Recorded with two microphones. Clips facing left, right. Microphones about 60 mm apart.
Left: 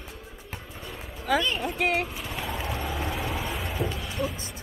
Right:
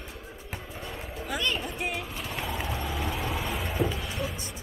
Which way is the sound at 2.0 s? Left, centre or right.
Centre.